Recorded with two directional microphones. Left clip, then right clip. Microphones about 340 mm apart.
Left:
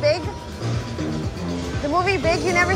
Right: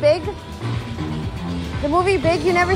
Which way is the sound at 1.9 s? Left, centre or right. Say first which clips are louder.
Right 2 dB; centre.